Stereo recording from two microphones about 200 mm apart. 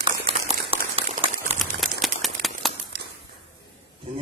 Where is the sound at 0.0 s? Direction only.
25° right (ahead or behind).